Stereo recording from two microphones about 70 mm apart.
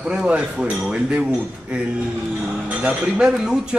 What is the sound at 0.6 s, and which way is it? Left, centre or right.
Speech, centre.